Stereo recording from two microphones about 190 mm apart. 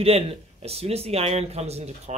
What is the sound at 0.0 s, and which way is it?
Speech, 30° right (ahead or behind).